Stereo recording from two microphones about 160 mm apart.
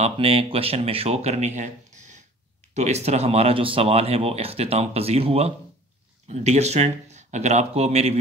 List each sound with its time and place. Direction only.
0.0 s speech: 35° right (ahead or behind)